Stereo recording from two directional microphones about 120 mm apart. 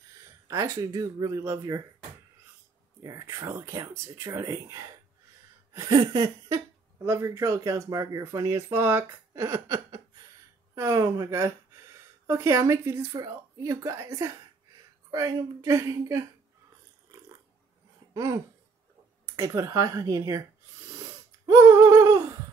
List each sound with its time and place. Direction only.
0.5 s speech: 30° right (ahead or behind)
3.0 s speech: 25° right (ahead or behind)
5.7 s a sound: 30° right (ahead or behind)
7.1 s speech: 25° right (ahead or behind)
18.1 s a sound: 30° right (ahead or behind)
19.3 s speech: 25° right (ahead or behind)